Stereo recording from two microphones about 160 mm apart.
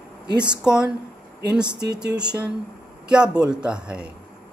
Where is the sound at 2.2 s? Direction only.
5° right (ahead or behind).